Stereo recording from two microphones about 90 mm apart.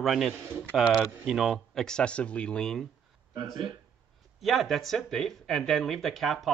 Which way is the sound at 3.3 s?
65° right (ahead or behind).